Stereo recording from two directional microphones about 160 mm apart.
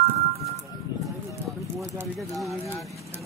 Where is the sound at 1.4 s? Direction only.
20° right (ahead or behind).